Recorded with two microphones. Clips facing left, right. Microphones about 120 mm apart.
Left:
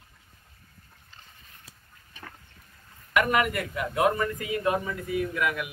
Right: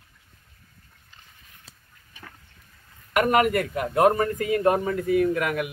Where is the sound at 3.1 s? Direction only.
45° right (ahead or behind).